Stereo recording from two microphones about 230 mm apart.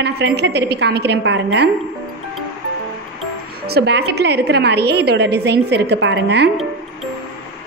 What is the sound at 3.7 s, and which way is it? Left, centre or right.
A woman's voice, right.